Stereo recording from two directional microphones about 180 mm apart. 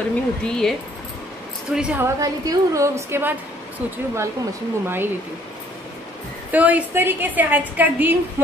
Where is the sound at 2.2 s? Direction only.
20° right (ahead or behind).